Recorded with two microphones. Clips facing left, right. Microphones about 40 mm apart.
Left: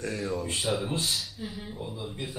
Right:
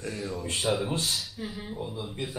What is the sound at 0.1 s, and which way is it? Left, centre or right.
Speech, centre.